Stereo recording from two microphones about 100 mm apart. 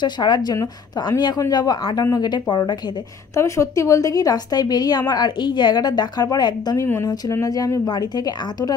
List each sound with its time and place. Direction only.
0.0 s speech: 50° left (ahead or behind)
3.3 s a woman's voice: 30° left (ahead or behind)
6.8 s a woman's voice: 30° left (ahead or behind)